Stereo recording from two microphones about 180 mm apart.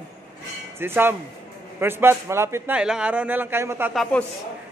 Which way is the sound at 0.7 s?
10° right (ahead or behind).